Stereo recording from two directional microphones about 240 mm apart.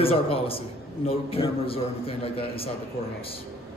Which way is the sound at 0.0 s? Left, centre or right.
Left.